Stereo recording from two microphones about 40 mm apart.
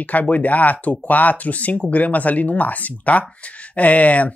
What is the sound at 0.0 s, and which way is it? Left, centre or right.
Speech, left.